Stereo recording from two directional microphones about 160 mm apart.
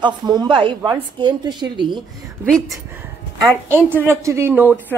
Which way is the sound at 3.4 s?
15° right (ahead or behind).